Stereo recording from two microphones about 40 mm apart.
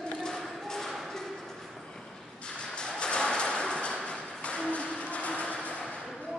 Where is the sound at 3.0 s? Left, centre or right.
Left.